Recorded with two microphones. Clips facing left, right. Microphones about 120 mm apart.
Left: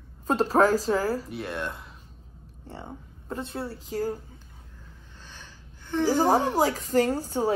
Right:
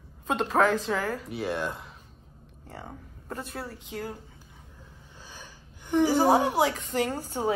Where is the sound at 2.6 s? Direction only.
25° left (ahead or behind).